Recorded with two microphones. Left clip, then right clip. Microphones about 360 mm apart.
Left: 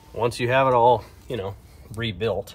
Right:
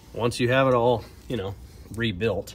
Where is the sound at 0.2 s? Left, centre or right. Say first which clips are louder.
Left 2 dB; centre.